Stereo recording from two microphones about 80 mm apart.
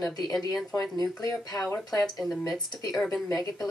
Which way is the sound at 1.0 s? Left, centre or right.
Left.